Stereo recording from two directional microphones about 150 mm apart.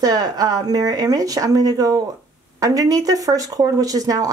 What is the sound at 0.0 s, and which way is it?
Speech, 25° right (ahead or behind).